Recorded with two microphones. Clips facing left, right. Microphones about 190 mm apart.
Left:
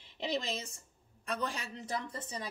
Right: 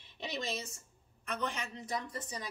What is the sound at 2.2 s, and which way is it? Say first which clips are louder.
Speech: left 1 dB; 25° left (ahead or behind).